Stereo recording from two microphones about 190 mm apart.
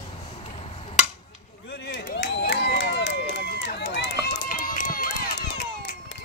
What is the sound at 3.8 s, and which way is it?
Run, 70° left (ahead or behind).